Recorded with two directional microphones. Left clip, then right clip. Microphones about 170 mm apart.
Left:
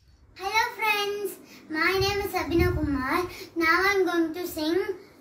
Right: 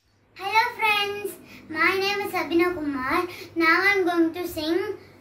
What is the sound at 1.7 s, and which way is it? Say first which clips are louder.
A child's voice: right 2 dB; 5° left (ahead or behind).